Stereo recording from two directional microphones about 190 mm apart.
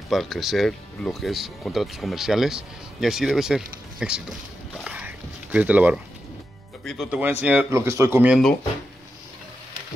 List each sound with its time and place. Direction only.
0.1 s speech: centre (ahead or behind)
6.8 s speech: 5° left (ahead or behind)
7.1 s speech: 10° right (ahead or behind)